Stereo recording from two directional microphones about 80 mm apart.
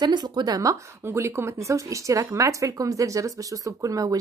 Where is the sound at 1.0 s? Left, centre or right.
Right.